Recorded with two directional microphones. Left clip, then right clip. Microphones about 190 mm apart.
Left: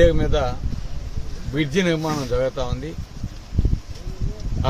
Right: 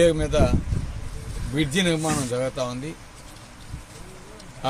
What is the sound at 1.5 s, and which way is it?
A man's voice, 5° right (ahead or behind).